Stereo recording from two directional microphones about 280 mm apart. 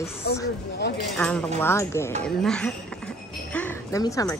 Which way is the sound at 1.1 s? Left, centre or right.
Centre.